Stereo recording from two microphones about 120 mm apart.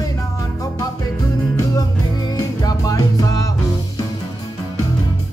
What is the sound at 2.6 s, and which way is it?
Music, 30° left (ahead or behind).